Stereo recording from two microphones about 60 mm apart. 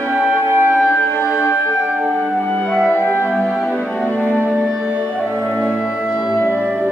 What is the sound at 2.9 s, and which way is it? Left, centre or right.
Music, left.